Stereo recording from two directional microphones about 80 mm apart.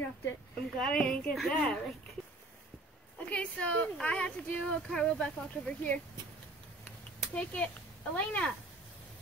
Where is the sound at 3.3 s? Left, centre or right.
Centre.